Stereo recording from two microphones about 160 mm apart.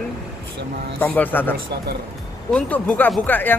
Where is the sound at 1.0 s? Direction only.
10° left (ahead or behind).